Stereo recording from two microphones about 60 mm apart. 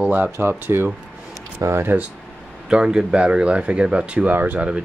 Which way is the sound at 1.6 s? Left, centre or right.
Right.